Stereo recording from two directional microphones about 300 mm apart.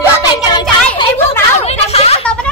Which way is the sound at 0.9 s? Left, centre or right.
Centre.